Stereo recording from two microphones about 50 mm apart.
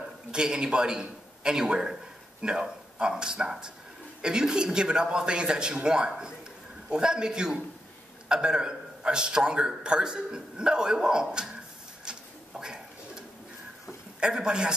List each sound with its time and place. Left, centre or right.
0.3 s a man's voice: centre
12.0 s pigeon: centre
14.2 s a man's voice: centre